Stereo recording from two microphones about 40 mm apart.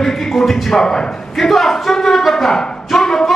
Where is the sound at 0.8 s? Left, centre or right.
Centre.